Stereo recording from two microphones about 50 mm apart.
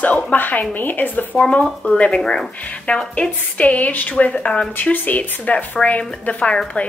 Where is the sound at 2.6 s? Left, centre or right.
Left.